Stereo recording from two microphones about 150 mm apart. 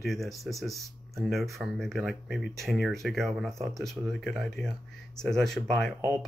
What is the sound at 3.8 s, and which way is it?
Speech, centre (ahead or behind).